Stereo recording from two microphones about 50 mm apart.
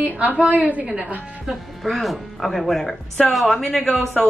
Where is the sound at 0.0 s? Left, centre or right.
Right.